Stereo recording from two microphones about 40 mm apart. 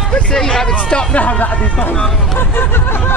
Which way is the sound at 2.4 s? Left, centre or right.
Left.